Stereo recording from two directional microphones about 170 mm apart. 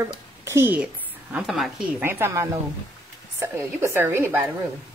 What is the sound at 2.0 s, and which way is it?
A woman's voice, 15° right (ahead or behind).